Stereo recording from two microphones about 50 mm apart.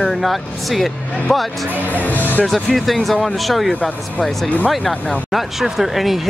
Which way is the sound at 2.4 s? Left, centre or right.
Centre.